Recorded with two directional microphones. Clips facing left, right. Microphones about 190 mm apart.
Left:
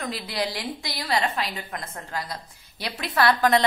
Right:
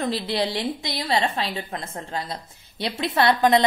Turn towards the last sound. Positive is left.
turn(degrees=-20)  # may be behind; listen again after turning